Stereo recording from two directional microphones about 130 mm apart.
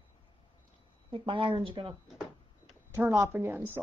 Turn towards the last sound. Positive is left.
turn(degrees=-15)  # may be behind; listen again after turning